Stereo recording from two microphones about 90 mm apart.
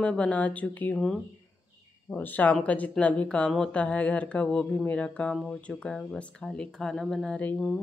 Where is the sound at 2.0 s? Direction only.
20° left (ahead or behind).